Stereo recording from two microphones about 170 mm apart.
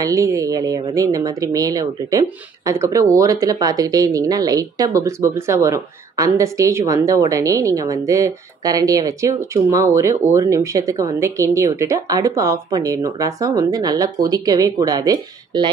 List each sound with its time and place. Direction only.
0.0 s speech: 20° right (ahead or behind)